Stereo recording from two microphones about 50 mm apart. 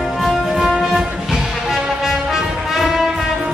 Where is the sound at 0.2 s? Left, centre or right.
Centre.